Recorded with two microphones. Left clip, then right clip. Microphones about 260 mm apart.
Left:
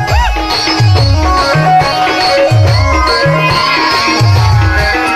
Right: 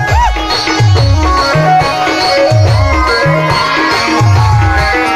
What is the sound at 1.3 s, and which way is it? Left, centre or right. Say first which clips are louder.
Music: even; left.